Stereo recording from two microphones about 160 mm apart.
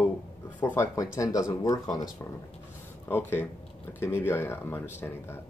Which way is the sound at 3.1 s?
15° left (ahead or behind).